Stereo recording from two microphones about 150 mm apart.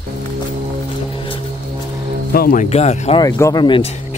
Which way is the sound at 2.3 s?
85° left.